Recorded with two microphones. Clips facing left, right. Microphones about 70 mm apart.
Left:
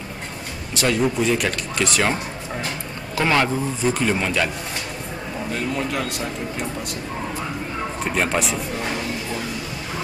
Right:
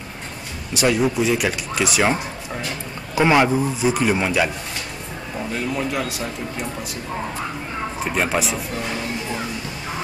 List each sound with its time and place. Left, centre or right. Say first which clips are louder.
0.7 s speech: right 2 dB; centre
3.2 s speech: right 4 dB; centre
5.5 s speech: right 1 dB; centre
8.0 s speech: even; centre